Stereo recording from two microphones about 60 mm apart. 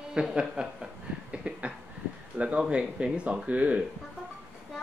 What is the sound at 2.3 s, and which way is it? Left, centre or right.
Speech, centre.